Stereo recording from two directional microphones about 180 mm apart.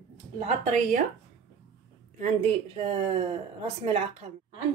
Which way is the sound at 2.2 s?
40° right (ahead or behind).